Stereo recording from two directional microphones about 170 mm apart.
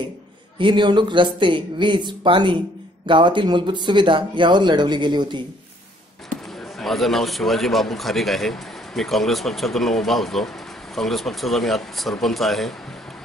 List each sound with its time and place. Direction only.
0.6 s speech: 30° right (ahead or behind)
6.8 s a man's voice: centre (ahead or behind)